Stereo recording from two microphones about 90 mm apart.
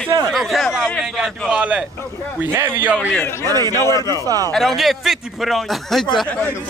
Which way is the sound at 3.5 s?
40° right (ahead or behind).